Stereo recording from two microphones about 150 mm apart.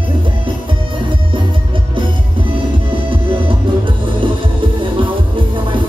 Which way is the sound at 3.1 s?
35° right (ahead or behind).